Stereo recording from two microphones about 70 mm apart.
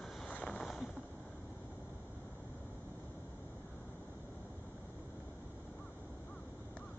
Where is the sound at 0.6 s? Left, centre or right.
Centre.